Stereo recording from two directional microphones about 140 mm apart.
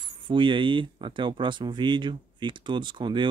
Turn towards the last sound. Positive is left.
turn(degrees=-35)  # may be behind; listen again after turning